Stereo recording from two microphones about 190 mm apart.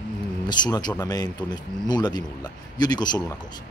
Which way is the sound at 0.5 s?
20° left (ahead or behind).